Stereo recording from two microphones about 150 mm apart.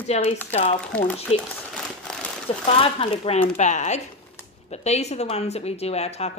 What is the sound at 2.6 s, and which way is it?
Speech, 40° left (ahead or behind).